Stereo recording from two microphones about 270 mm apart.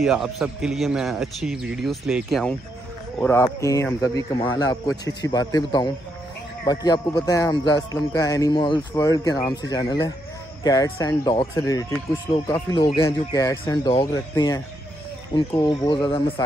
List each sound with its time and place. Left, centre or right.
0.0 s a man's voice: centre